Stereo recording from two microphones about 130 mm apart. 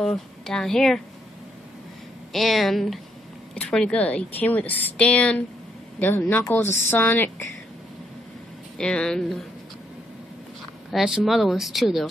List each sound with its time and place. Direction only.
0.0 s speech: 5° left (ahead or behind)
2.3 s speech: centre (ahead or behind)
8.7 s speech: 5° left (ahead or behind)
10.9 s speech: 5° right (ahead or behind)